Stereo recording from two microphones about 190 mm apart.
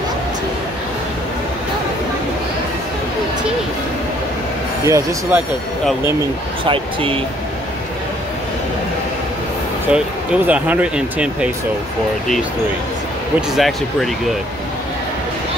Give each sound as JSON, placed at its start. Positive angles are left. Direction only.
{"t": 4.8, "sound": "speech", "side_deg": -15}
{"t": 6.6, "sound": "speech", "side_deg": -30}
{"t": 9.9, "sound": "speech", "side_deg": -5}
{"t": 13.6, "sound": "speech", "side_deg": 0}